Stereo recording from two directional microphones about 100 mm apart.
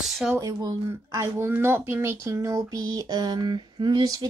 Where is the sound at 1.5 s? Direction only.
25° right (ahead or behind).